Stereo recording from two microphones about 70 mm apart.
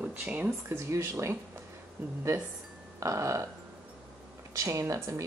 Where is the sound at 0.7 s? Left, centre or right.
Right.